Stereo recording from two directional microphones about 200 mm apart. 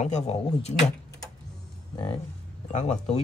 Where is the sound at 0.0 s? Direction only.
35° left (ahead or behind).